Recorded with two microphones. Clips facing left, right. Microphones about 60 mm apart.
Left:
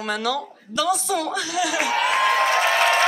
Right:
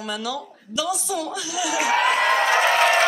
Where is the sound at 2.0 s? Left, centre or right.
Right.